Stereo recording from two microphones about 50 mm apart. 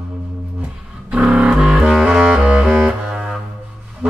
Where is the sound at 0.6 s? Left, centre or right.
Right.